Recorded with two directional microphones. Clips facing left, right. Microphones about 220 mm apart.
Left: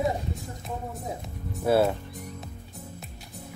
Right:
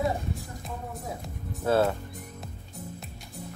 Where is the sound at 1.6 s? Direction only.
15° left (ahead or behind).